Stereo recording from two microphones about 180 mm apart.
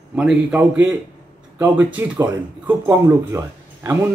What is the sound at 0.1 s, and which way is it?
Speech, 5° right (ahead or behind).